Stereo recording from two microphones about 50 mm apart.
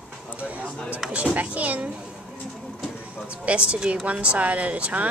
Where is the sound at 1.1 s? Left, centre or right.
Right.